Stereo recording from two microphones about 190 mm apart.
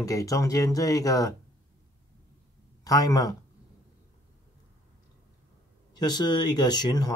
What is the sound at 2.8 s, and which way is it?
Speech, 20° left (ahead or behind).